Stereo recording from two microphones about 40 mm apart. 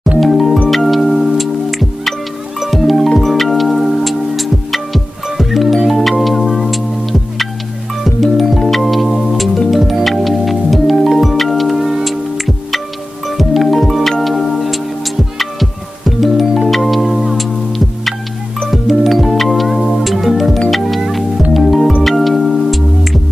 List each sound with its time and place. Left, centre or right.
0.2 s music: centre
16.2 s music: centre